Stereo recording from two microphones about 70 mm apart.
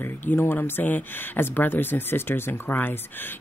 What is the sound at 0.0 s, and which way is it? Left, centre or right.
Speech, left.